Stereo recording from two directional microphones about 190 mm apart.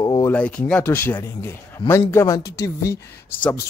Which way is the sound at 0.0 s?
20° left (ahead or behind).